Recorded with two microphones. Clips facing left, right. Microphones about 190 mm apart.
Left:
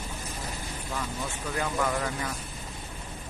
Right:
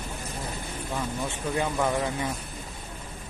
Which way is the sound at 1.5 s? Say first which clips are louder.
Right 3 dB; 25° right (ahead or behind).